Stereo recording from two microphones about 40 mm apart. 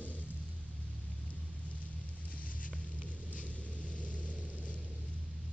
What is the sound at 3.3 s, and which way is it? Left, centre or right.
Vehicle, left.